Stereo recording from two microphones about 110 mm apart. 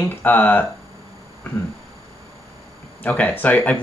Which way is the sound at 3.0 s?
15° left (ahead or behind).